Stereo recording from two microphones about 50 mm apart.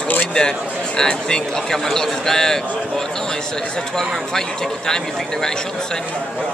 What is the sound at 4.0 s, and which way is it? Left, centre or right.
A man's voice, centre.